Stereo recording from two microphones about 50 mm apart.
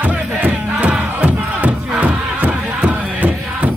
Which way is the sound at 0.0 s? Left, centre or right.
Right.